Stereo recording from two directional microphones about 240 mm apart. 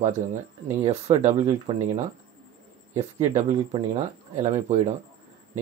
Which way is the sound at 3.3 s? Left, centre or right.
Right.